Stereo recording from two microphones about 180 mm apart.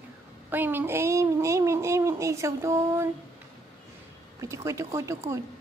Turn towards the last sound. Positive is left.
turn(degrees=-15)  # may be behind; listen again after turning